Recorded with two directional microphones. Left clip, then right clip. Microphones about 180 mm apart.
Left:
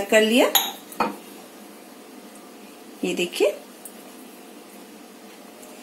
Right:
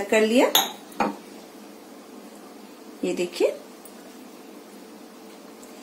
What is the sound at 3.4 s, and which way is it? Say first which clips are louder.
Speech: left 2 dB; 40° left (ahead or behind).